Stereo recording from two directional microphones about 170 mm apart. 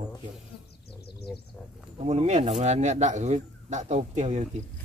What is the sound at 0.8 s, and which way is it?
Bird, 70° left (ahead or behind).